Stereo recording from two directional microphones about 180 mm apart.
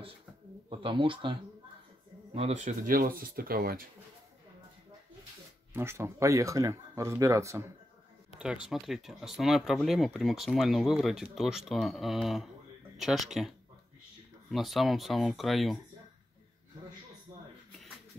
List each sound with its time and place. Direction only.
0.7 s speech: 30° right (ahead or behind)
2.3 s speech: 40° right (ahead or behind); by 3.8 s 55° right (ahead or behind)
5.7 s speech: 15° right (ahead or behind)
8.6 s speech: centre (ahead or behind)
14.5 s speech: centre (ahead or behind)